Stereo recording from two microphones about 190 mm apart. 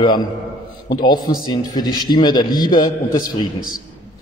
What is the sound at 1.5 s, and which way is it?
A man's voice, 20° left (ahead or behind).